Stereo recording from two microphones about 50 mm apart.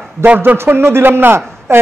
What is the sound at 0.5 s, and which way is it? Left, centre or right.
A man's voice, right.